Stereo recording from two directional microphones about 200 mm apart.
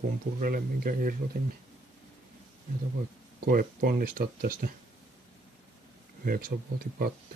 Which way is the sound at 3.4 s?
45° right (ahead or behind).